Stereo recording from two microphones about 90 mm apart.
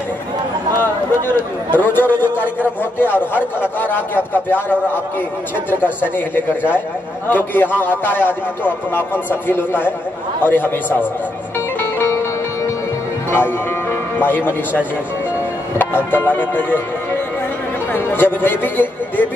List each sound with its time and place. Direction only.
1.2 s a man's voice: 20° left (ahead or behind)
11.8 s music: 25° left (ahead or behind)
13.3 s music: 25° left (ahead or behind)
16.1 s a man's voice: 20° left (ahead or behind)